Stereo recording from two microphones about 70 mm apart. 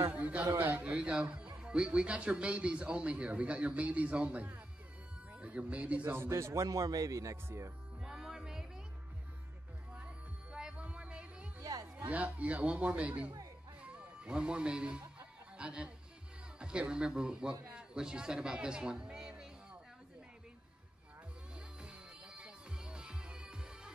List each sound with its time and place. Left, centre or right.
0.1 s a sound: centre
0.6 s speech: right
6.1 s a man's voice: right
7.4 s speech: right
8.0 s music: centre
9.9 s music: centre
11.6 s music: right
12.1 s a man's voice: right
13.9 s music: centre
16.5 s a man's voice: centre
21.5 s music: centre